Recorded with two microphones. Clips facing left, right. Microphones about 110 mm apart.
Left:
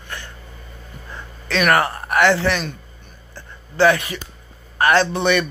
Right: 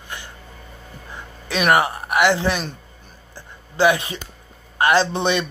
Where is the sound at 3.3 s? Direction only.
15° right (ahead or behind).